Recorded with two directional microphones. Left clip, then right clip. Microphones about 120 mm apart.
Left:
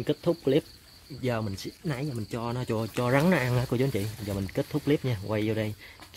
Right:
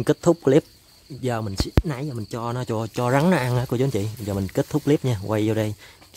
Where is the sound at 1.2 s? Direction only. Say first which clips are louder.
Right 5 dB; 40° right (ahead or behind).